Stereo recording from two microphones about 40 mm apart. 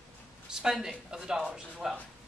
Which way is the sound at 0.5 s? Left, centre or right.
Centre.